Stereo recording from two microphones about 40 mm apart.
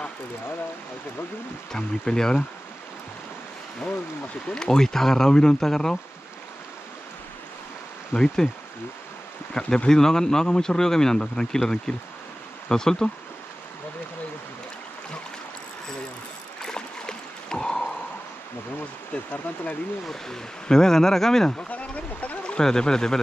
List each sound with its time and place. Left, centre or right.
1.7 s speech: centre
4.5 s speech: centre
8.1 s speech: left
9.5 s speech: left
9.8 s speech: centre
16.6 s a sound: centre
19.1 s speech: left
20.6 s speech: centre
21.5 s a sound: left
22.6 s speech: centre